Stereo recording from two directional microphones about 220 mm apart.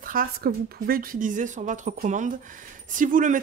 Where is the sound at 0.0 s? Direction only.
40° right (ahead or behind).